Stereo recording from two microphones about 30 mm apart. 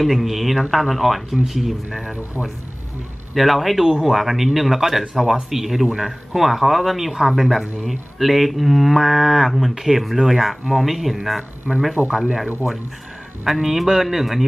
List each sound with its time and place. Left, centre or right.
0.0 s speech: centre
3.3 s speech: centre
12.1 s speech: centre
13.4 s speech: centre